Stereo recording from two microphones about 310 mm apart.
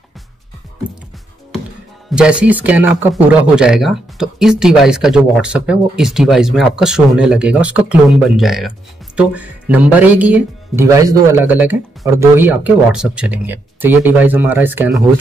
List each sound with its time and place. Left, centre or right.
2.0 s speech: centre